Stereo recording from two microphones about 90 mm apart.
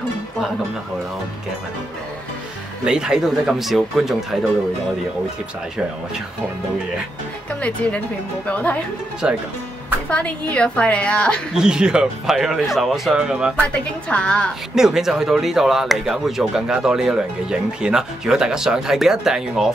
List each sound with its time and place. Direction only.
2.8 s speech: 10° right (ahead or behind)
7.6 s a woman's voice: 15° left (ahead or behind)
9.2 s speech: 10° right (ahead or behind)
10.0 s a woman's voice: 15° left (ahead or behind)
11.5 s speech: 10° right (ahead or behind)
13.6 s a woman's voice: 10° left (ahead or behind)
14.8 s speech: 5° right (ahead or behind)